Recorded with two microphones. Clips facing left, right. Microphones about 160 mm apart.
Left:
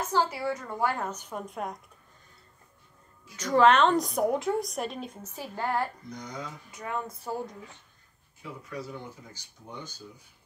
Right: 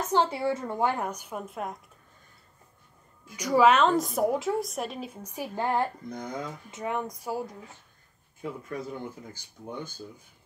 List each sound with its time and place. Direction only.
0.1 s a woman's voice: 25° right (ahead or behind); by 1.8 s centre (ahead or behind)
3.3 s a woman's voice: 10° right (ahead or behind)
6.0 s speech: 55° right (ahead or behind)
6.7 s a woman's voice: 20° right (ahead or behind)
8.4 s speech: 50° right (ahead or behind)